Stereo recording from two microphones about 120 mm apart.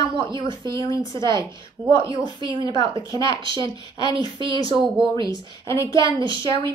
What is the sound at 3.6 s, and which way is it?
Speech, 35° left (ahead or behind).